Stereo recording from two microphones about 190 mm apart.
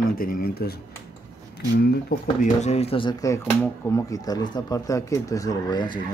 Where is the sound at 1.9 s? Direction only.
55° left (ahead or behind).